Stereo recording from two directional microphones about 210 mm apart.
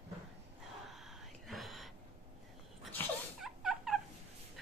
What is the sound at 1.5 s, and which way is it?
Whispering, centre (ahead or behind).